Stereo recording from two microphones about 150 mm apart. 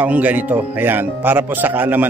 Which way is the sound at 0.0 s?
10° right (ahead or behind).